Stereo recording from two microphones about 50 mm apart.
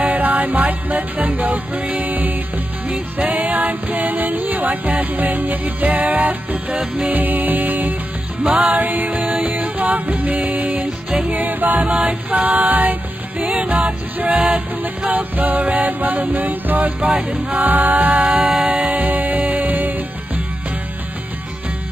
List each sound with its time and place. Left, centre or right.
0.0 s music: right
17.0 s music: right
17.6 s music: right
18.2 s music: right